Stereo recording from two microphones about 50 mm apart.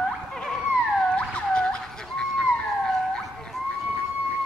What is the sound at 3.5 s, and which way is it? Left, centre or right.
Run, centre.